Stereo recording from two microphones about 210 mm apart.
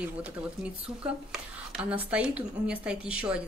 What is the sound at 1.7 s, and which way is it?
A woman's voice, 5° right (ahead or behind).